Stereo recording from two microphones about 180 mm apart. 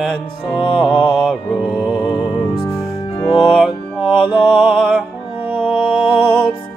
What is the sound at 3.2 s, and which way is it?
Music, 25° left (ahead or behind).